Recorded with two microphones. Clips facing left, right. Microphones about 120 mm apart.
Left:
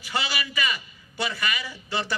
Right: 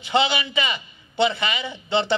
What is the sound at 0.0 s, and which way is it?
A man's voice, 25° right (ahead or behind).